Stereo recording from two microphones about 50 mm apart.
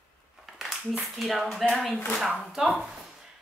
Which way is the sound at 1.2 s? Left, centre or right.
Centre.